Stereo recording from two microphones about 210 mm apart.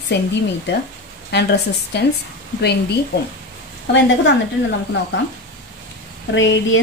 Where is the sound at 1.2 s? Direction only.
55° left (ahead or behind).